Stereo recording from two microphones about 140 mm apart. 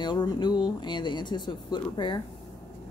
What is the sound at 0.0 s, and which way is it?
A woman's voice, 30° left (ahead or behind).